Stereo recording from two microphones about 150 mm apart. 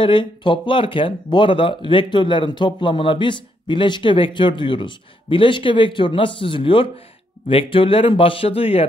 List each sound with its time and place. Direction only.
0.0 s speech: 35° left (ahead or behind)